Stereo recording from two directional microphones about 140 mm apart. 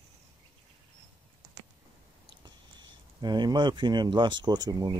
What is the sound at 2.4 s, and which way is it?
Speech, 30° right (ahead or behind).